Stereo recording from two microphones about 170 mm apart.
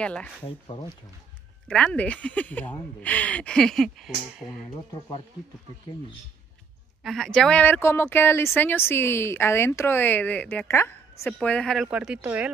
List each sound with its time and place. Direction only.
0.0 s speech: 10° left (ahead or behind)
0.5 s speech: 25° left (ahead or behind)
1.7 s speech: 5° left (ahead or behind)
7.0 s speech: centre (ahead or behind)